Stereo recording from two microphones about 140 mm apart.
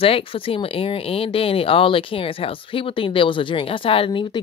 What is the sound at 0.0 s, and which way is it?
Speech, 40° left (ahead or behind).